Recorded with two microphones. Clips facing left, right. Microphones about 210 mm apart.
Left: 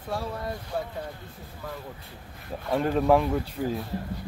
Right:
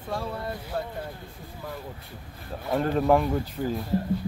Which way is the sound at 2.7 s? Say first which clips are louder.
Even; centre (ahead or behind).